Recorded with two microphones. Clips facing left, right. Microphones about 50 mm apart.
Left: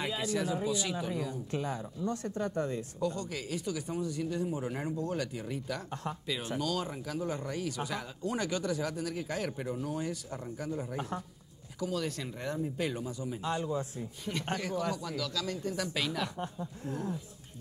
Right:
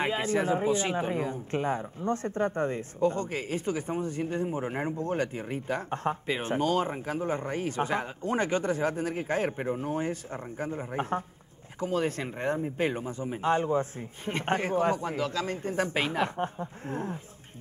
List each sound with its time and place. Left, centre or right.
0.0 s speech: right